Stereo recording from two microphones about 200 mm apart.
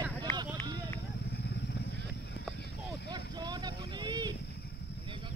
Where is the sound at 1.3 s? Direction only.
55° left (ahead or behind).